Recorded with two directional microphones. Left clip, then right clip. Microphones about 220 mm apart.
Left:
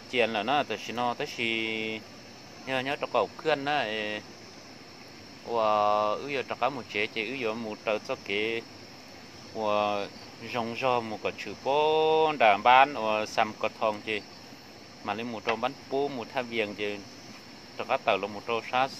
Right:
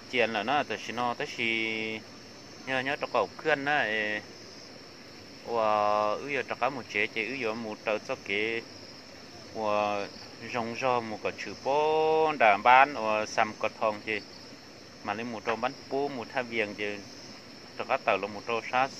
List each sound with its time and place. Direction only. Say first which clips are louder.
0.1 s speech: left 1 dB; 15° left (ahead or behind)
5.5 s speech: left 1 dB; 15° left (ahead or behind)